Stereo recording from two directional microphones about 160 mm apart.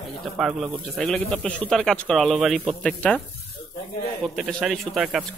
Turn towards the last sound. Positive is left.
turn(degrees=0)  # may be behind; listen again after turning